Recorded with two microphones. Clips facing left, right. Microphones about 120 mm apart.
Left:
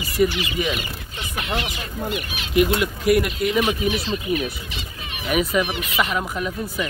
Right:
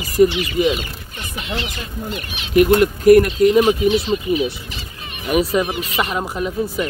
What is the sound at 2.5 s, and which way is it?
Speech, 45° right (ahead or behind).